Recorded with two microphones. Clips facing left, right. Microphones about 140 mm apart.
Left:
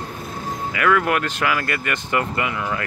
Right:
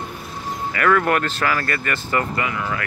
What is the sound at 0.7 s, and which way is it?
Speech, 5° left (ahead or behind).